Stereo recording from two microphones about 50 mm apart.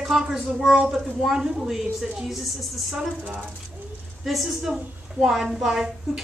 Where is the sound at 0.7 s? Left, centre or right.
Centre.